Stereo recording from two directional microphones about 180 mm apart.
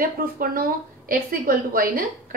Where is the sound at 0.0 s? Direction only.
50° right (ahead or behind).